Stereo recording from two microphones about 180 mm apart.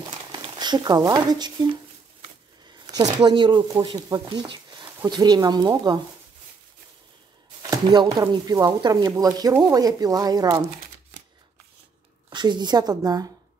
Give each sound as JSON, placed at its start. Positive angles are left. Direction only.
{"t": 0.0, "sound": "speech", "side_deg": -25}
{"t": 2.9, "sound": "speech", "side_deg": -20}
{"t": 7.7, "sound": "speech", "side_deg": -20}
{"t": 12.3, "sound": "speech", "side_deg": -25}